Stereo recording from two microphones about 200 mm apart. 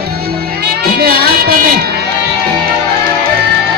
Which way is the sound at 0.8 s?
50° right (ahead or behind).